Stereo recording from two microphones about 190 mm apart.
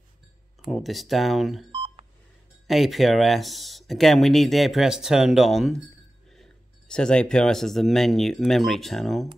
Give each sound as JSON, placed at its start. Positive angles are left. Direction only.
{"t": 0.7, "sound": "speech", "side_deg": 0}
{"t": 1.7, "sound": "telephone dialing", "side_deg": -25}
{"t": 2.7, "sound": "speech", "side_deg": 0}